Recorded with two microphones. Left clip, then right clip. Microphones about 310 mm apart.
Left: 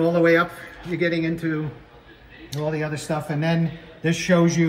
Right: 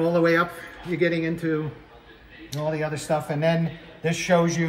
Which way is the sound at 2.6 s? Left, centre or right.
Right.